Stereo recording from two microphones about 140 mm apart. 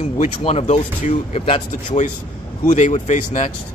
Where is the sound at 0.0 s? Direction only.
45° left (ahead or behind).